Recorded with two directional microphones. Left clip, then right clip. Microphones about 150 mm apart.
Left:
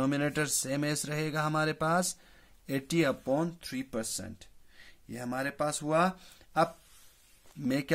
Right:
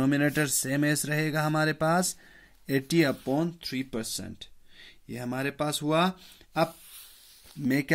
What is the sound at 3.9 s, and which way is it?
Speech, 25° right (ahead or behind).